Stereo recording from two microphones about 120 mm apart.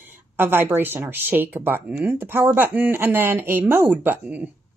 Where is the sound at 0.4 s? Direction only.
15° right (ahead or behind).